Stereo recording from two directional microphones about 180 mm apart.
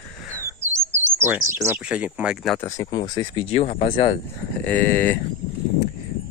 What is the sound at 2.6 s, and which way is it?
Speech, 15° left (ahead or behind).